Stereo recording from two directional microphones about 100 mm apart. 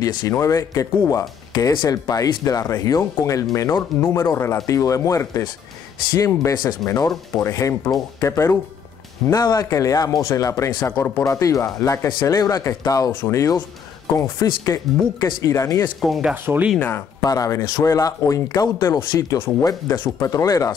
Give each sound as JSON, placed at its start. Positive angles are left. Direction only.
{"t": 0.0, "sound": "speech", "side_deg": 35}
{"t": 1.7, "sound": "speech", "side_deg": 45}
{"t": 9.4, "sound": "speech", "side_deg": 40}
{"t": 10.8, "sound": "speech", "side_deg": 25}
{"t": 16.0, "sound": "speech", "side_deg": -5}
{"t": 16.4, "sound": "speech", "side_deg": -15}
{"t": 17.2, "sound": "speech", "side_deg": 35}
{"t": 19.6, "sound": "speech", "side_deg": 40}